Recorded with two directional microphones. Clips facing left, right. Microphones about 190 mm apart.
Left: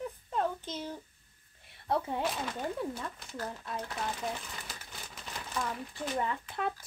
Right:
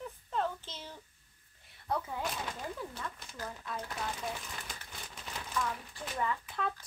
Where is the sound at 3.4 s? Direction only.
20° left (ahead or behind).